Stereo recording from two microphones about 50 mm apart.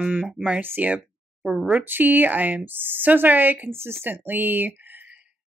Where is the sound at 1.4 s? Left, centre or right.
Centre.